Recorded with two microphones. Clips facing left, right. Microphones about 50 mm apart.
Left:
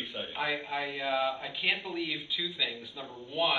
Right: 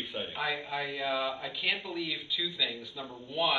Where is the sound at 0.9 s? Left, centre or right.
Centre.